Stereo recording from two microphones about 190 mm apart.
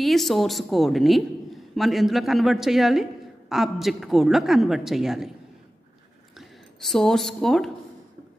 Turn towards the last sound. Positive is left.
turn(degrees=0)  # may be behind; listen again after turning